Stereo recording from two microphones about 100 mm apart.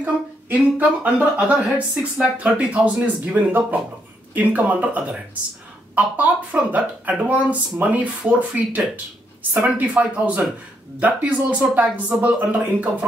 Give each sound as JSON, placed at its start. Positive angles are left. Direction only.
{"t": 0.0, "sound": "speech", "side_deg": -15}